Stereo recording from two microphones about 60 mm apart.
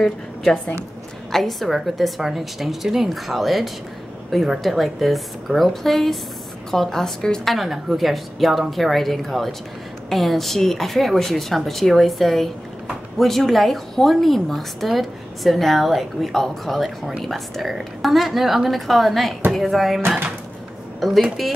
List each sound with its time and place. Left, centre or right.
0.0 s a woman's voice: centre
7.5 s a woman's voice: centre
21.0 s a woman's voice: centre